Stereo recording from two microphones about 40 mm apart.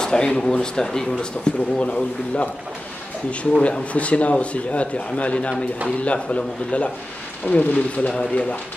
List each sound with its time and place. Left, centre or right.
0.0 s a man's voice: centre